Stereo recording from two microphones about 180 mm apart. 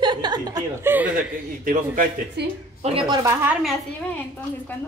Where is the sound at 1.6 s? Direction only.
50° right (ahead or behind).